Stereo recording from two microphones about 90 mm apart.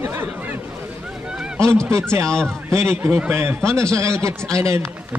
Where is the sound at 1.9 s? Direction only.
30° right (ahead or behind).